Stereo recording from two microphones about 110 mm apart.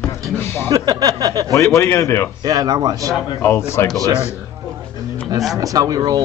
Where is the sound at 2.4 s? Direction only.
35° right (ahead or behind).